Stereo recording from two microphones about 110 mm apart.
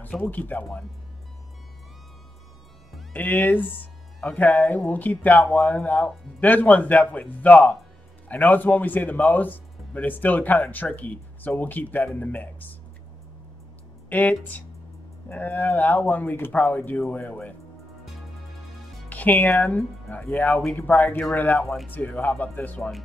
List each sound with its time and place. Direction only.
0.1 s speech: 10° left (ahead or behind)
3.1 s speech: 15° left (ahead or behind)
14.0 s speech: 15° left (ahead or behind)
19.0 s speech: 15° left (ahead or behind)